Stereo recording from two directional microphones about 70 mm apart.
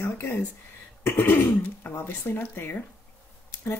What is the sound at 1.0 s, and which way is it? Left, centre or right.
A woman's voice, left.